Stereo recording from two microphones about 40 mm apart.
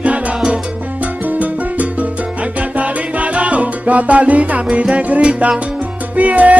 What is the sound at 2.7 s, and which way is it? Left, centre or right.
Salsa music, right.